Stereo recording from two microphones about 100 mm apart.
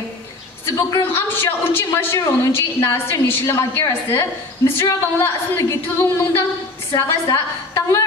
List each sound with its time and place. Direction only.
0.7 s a woman's voice: 35° left (ahead or behind)
1.1 s a woman's voice: 20° left (ahead or behind)